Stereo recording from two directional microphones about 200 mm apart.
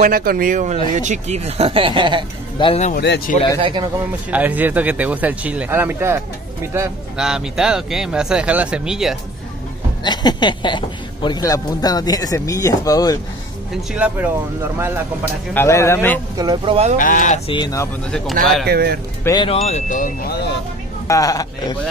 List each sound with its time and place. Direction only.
0.0 s a man's voice: 45° right (ahead or behind); by 2.2 s 25° right (ahead or behind)
2.6 s a man's voice: 30° left (ahead or behind)
2.9 s speech: 50° left (ahead or behind)
4.3 s speech: 10° right (ahead or behind)
10.0 s a man's voice: 20° left (ahead or behind)
13.9 s speech: 5° right (ahead or behind)
15.5 s speech: 15° left (ahead or behind)
16.3 s speech: 20° right (ahead or behind)
17.0 s speech: 40° left (ahead or behind)
17.5 s a man's voice: 20° left (ahead or behind)
18.4 s speech: centre (ahead or behind)
18.7 s speech: 50° right (ahead or behind)
19.2 s speech: 25° left (ahead or behind); by 20.4 s 45° left (ahead or behind)
21.1 s speech: 15° left (ahead or behind)